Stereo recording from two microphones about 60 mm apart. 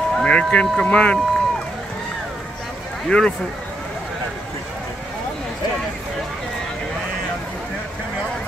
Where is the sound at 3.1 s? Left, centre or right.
Centre.